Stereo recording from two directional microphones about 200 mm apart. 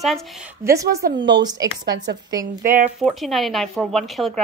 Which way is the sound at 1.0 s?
60° right (ahead or behind).